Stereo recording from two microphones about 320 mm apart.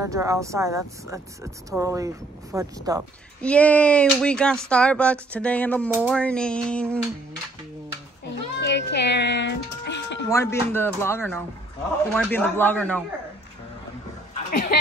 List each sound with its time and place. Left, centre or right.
0.0 s speech: centre
3.4 s speech: centre
8.5 s speech: left
10.3 s speech: centre
14.5 s speech: left